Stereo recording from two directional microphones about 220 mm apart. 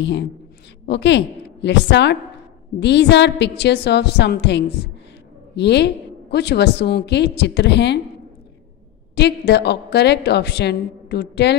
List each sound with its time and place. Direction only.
0.8 s a woman's voice: 50° left (ahead or behind)
9.1 s a woman's voice: 50° left (ahead or behind)